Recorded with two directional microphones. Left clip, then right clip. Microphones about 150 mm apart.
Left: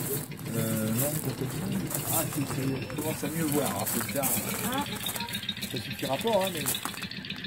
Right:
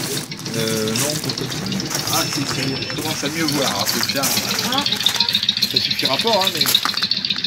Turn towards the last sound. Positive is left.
turn(degrees=0)  # may be behind; listen again after turning